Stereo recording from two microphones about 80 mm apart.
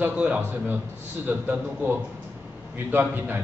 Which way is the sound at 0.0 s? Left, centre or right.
Right.